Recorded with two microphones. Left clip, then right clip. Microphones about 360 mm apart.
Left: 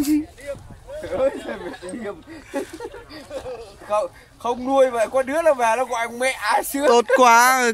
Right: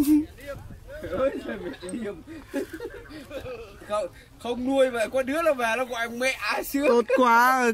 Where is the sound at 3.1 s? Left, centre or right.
Centre.